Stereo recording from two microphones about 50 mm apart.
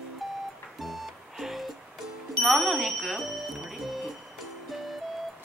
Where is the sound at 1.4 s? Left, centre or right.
Centre.